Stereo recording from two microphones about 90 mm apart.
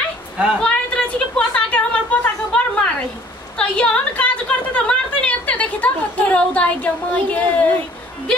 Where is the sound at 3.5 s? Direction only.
10° left (ahead or behind).